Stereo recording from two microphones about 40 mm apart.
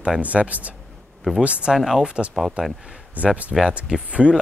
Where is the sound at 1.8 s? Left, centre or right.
Centre.